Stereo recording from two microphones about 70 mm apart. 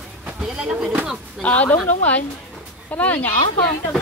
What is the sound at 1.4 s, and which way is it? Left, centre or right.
A woman's voice, left.